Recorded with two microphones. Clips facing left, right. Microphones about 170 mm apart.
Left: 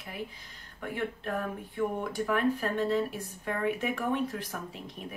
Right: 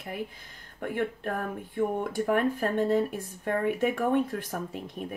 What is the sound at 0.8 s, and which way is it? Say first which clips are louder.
Speech: right 4 dB; 50° right (ahead or behind).